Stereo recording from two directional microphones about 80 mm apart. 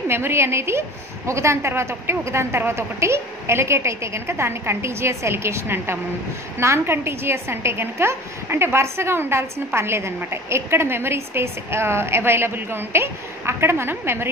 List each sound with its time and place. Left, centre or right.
0.1 s a woman's voice: right